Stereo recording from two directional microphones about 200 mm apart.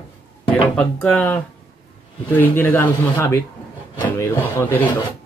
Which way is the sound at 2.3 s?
10° left (ahead or behind).